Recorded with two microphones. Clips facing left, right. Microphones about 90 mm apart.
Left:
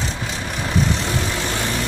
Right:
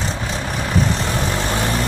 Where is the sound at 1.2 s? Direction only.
40° right (ahead or behind).